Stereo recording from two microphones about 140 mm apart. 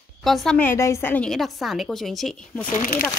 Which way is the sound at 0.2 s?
Centre (ahead or behind).